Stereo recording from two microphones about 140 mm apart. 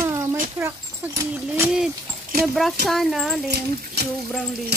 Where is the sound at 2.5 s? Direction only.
Centre (ahead or behind).